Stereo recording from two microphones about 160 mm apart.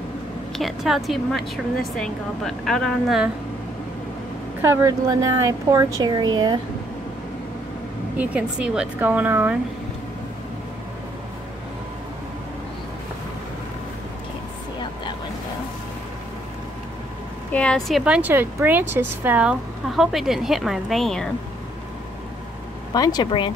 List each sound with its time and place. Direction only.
0.6 s speech: centre (ahead or behind)
4.6 s a woman's voice: 15° right (ahead or behind)
8.2 s a woman's voice: 10° right (ahead or behind)
17.5 s speech: 5° left (ahead or behind)
22.9 s a woman's voice: 25° left (ahead or behind)